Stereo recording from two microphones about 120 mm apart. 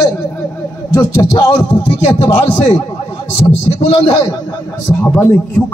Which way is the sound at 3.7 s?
55° left (ahead or behind).